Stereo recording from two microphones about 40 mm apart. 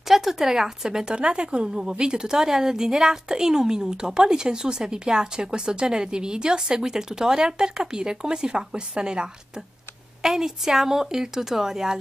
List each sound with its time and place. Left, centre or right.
0.1 s speech: centre